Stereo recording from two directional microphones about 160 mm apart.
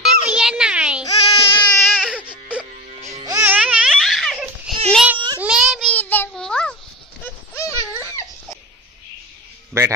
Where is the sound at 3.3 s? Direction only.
20° right (ahead or behind).